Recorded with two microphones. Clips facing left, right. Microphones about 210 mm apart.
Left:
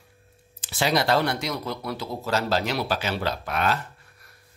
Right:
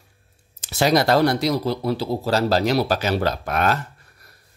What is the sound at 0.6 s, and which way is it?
Speech, 40° right (ahead or behind).